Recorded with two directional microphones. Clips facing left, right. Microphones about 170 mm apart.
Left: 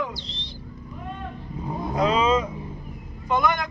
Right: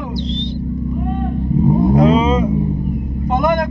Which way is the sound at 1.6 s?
30° right (ahead or behind).